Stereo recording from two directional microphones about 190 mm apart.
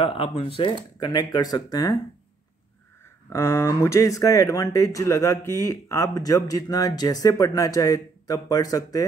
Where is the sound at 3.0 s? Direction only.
15° left (ahead or behind).